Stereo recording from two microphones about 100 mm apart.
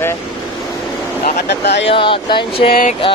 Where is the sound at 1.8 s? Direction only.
60° left (ahead or behind).